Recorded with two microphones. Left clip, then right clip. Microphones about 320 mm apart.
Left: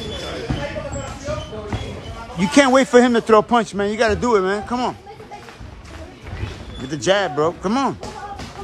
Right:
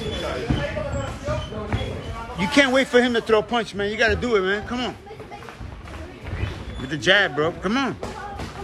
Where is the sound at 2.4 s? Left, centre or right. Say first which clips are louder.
Left 4 dB; centre.